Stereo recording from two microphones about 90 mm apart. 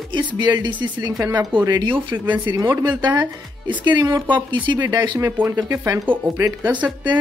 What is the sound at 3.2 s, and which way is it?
Speech, 55° right (ahead or behind).